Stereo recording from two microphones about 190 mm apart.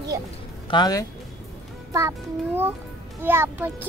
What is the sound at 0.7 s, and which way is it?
Speech, 20° left (ahead or behind).